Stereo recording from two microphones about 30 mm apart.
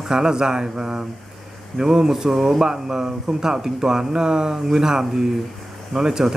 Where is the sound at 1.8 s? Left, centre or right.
Centre.